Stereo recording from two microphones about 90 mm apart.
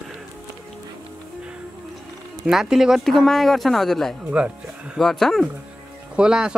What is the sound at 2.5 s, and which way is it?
Speech, 5° right (ahead or behind).